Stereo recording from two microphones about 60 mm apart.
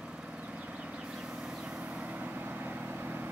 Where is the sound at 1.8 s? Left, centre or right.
Right.